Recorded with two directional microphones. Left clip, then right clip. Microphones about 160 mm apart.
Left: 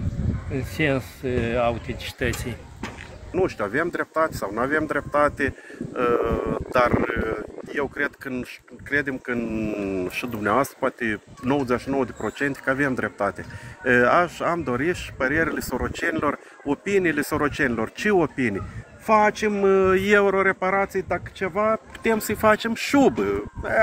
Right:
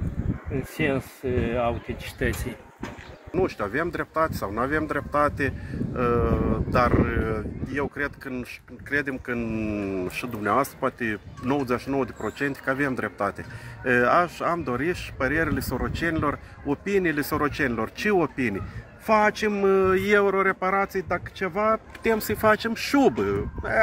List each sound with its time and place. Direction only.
0.5 s speech: 5° right (ahead or behind)
3.3 s speech: 20° left (ahead or behind)
8.9 s speech: 10° left (ahead or behind)
19.0 s speech: 10° left (ahead or behind); by 23.8 s 25° left (ahead or behind)